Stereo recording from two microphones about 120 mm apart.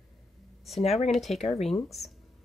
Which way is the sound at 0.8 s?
60° left (ahead or behind).